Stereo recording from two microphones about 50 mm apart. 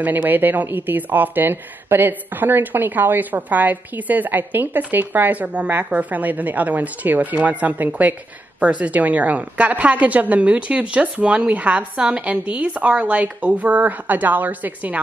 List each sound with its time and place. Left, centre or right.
0.0 s speech: right